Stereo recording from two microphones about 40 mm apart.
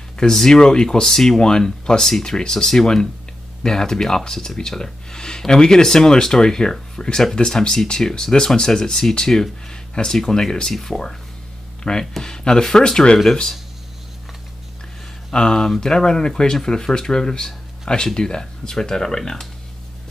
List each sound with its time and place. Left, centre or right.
0.2 s speech: centre
15.3 s speech: centre